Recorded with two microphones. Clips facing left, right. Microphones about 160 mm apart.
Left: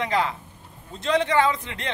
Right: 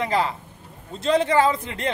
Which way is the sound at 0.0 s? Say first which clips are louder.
Right 1 dB; 35° right (ahead or behind).